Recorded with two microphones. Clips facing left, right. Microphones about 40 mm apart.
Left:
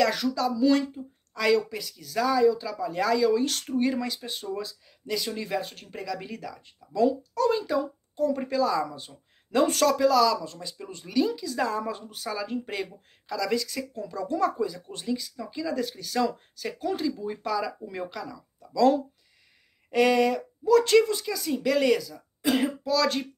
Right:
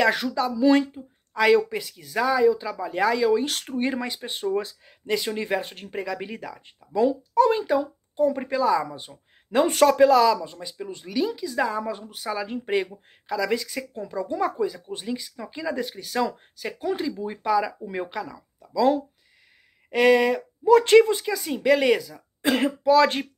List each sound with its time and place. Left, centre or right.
0.0 s speech: right
10.3 s speech: centre
18.6 s speech: centre
20.6 s speech: right
22.4 s speech: right
22.8 s speech: right